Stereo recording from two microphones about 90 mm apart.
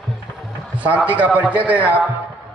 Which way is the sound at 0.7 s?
15° right (ahead or behind).